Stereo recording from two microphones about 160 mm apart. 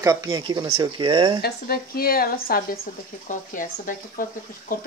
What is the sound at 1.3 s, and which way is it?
Speech, 80° left.